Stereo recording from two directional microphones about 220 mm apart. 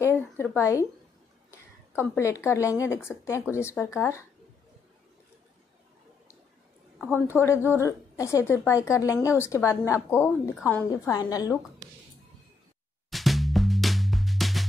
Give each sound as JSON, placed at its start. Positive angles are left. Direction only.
{"t": 0.0, "sound": "a sound", "side_deg": 10}
{"t": 1.5, "sound": "a woman's voice", "side_deg": 10}
{"t": 7.1, "sound": "a woman's voice", "side_deg": 10}
{"t": 13.1, "sound": "music", "side_deg": 0}